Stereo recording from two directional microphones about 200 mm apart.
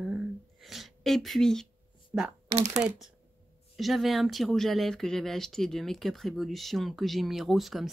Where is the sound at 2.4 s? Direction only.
35° right (ahead or behind).